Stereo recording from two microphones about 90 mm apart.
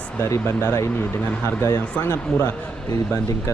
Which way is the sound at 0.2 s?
30° left (ahead or behind).